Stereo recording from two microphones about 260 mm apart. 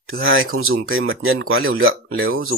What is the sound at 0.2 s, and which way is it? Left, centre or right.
Speech, right.